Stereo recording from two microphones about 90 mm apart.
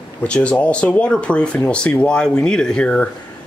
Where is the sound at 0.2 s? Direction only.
15° left (ahead or behind).